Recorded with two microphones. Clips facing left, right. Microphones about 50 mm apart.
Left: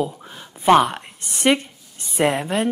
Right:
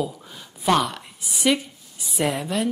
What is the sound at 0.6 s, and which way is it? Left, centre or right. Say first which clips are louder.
Speech: left 6 dB; left.